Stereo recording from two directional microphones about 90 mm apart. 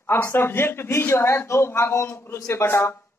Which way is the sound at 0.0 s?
25° left (ahead or behind).